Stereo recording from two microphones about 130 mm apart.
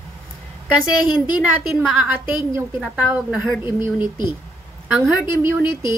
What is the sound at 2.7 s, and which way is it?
Speech, centre (ahead or behind).